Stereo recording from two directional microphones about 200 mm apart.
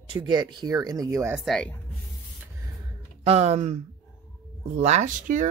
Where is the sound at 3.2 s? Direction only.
30° right (ahead or behind).